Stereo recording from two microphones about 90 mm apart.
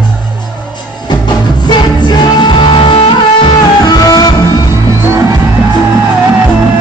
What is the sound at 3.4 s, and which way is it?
Music, 50° left (ahead or behind).